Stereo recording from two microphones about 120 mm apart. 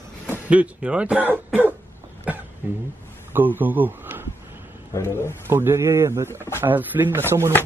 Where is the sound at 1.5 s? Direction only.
15° right (ahead or behind).